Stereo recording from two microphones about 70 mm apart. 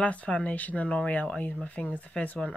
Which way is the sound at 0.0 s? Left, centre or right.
Centre.